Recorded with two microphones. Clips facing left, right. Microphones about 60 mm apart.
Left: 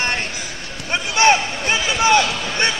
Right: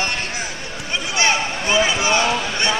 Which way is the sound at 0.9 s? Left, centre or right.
Left.